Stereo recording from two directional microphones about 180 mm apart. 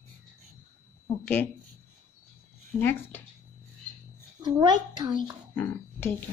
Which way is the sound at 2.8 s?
10° left (ahead or behind).